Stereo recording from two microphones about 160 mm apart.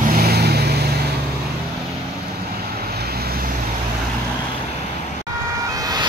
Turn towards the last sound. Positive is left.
turn(degrees=-25)  # may be behind; listen again after turning